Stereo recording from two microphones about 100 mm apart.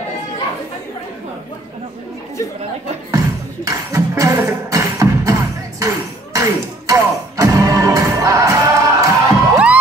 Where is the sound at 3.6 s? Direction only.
35° right (ahead or behind).